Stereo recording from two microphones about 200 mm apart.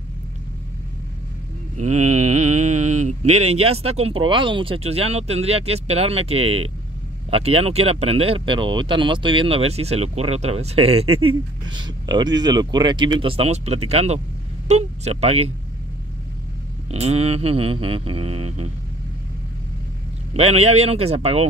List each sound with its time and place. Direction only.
1.8 s speech: 35° right (ahead or behind)
16.9 s speech: 30° right (ahead or behind)
20.3 s speech: 30° right (ahead or behind)